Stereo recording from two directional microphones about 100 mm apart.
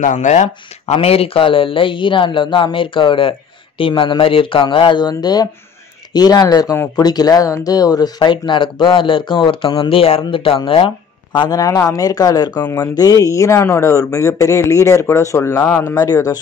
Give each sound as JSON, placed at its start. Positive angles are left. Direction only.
{"t": 0.8, "sound": "a man's voice", "side_deg": 85}
{"t": 11.3, "sound": "speech", "side_deg": 40}
{"t": 12.5, "sound": "speech", "side_deg": 25}
{"t": 12.9, "sound": "speech", "side_deg": 40}